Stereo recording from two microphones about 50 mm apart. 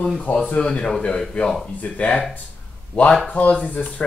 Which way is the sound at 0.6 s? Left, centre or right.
Centre.